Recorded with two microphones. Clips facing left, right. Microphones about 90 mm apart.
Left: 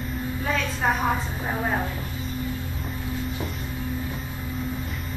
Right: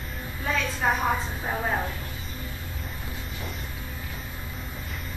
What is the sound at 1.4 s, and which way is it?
Speech, 5° left (ahead or behind).